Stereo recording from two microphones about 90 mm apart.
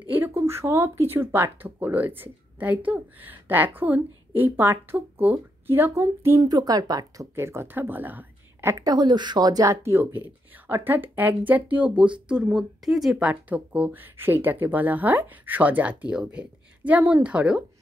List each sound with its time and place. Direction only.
0.1 s speech: 25° right (ahead or behind)
6.4 s speech: 50° right (ahead or behind)
7.3 s a woman's voice: 30° right (ahead or behind)
8.7 s speech: 50° right (ahead or behind)
9.8 s speech: 20° right (ahead or behind)